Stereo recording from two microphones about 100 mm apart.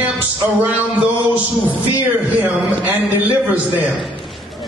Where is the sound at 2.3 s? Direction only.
15° right (ahead or behind).